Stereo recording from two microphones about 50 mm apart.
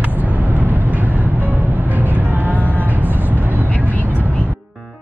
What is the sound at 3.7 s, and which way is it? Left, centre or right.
Vehicle, left.